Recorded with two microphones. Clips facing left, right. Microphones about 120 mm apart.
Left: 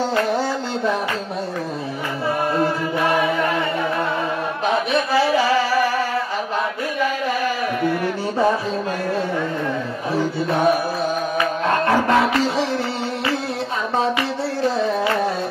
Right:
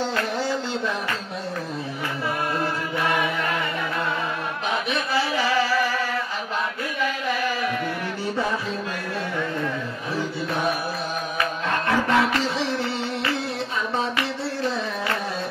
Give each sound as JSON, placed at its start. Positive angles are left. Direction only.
{"t": 3.1, "sound": "chant", "side_deg": 30}
{"t": 11.6, "sound": "music", "side_deg": 40}